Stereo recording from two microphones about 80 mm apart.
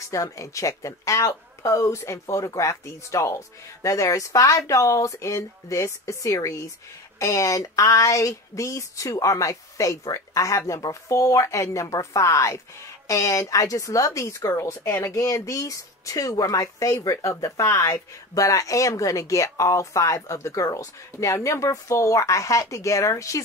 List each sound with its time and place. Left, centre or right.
0.1 s speech: left